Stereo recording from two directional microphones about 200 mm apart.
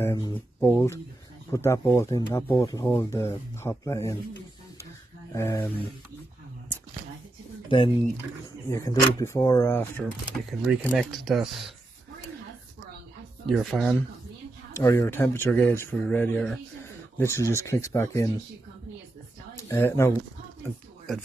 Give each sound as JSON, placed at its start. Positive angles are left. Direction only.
{"t": 0.0, "sound": "speech", "side_deg": 20}
{"t": 5.3, "sound": "speech", "side_deg": 15}
{"t": 7.6, "sound": "speech", "side_deg": 25}
{"t": 8.7, "sound": "speech", "side_deg": 15}
{"t": 13.5, "sound": "speech", "side_deg": 0}
{"t": 14.7, "sound": "speech", "side_deg": 15}
{"t": 19.5, "sound": "speech", "side_deg": 15}